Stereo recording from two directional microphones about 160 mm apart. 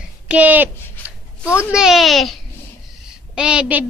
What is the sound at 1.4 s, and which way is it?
Speech, 15° left (ahead or behind).